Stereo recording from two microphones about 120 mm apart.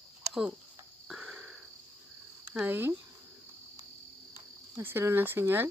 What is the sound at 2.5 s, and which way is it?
Speech, 15° right (ahead or behind).